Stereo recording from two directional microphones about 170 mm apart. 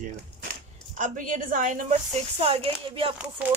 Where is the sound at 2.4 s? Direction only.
35° right (ahead or behind).